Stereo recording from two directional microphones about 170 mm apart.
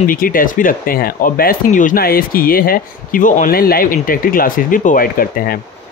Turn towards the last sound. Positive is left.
turn(degrees=55)  # may be behind; listen again after turning